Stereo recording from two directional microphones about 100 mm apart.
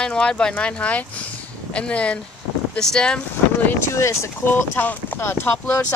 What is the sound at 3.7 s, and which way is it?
Speech, 30° left (ahead or behind).